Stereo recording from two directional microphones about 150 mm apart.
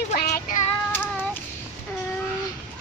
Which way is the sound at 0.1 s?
60° left (ahead or behind).